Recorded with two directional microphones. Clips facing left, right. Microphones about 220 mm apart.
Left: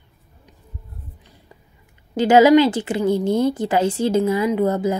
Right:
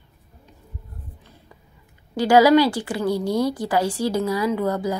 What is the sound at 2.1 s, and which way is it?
A woman's voice, 20° left (ahead or behind).